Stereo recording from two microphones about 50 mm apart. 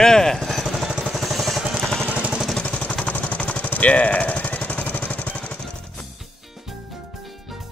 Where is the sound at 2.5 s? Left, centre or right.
Left.